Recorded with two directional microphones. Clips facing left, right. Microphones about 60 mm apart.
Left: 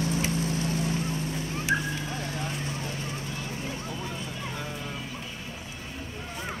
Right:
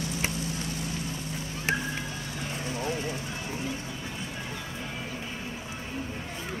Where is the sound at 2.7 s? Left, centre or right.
Right.